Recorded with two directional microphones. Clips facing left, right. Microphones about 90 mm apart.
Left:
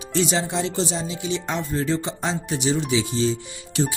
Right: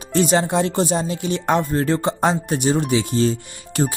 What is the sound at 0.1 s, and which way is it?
Speech, 50° right (ahead or behind).